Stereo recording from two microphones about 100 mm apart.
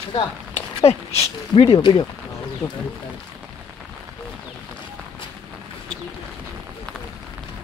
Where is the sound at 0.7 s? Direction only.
90° left; by 1.8 s 65° left (ahead or behind).